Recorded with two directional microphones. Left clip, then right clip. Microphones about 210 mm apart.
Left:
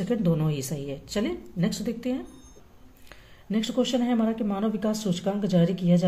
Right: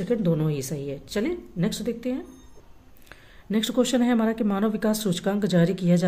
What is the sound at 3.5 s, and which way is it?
Speech, 25° right (ahead or behind).